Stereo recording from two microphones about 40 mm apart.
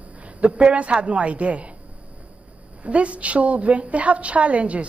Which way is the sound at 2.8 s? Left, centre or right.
Right.